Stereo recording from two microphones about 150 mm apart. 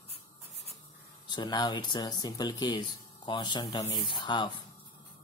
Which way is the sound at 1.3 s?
30° left (ahead or behind).